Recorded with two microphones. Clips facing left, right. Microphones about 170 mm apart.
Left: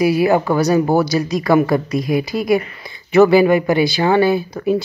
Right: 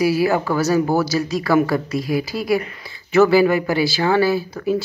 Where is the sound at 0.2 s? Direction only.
20° left (ahead or behind).